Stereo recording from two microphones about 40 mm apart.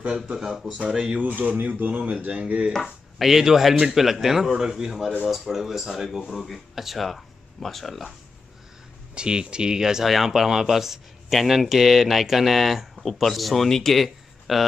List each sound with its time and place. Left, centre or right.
0.0 s speech: right
0.4 s speech: centre
0.8 s speech: centre
1.4 s speech: right
2.0 s speech: right
2.8 s speech: centre
9.1 s speech: right; by 14.6 s centre